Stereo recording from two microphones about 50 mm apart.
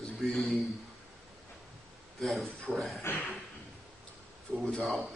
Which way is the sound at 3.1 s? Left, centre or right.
Left.